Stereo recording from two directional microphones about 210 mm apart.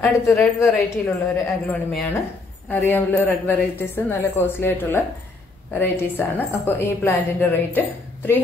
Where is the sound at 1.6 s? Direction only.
10° left (ahead or behind).